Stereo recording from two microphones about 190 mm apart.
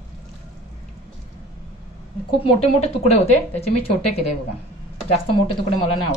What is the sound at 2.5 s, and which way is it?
A woman's voice, 35° left (ahead or behind).